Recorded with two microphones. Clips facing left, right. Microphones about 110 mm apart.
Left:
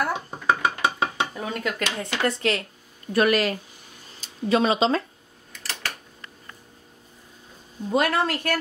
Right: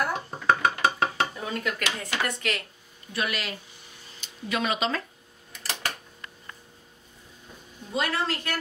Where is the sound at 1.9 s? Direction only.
25° left (ahead or behind).